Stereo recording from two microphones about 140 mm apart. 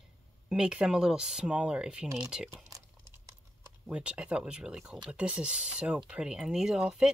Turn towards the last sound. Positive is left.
turn(degrees=-5)  # may be behind; listen again after turning